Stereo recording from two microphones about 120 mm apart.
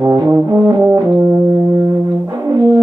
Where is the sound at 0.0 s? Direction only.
30° right (ahead or behind).